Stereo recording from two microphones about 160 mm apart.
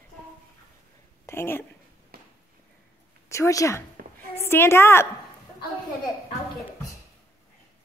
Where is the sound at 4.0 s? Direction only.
65° right (ahead or behind).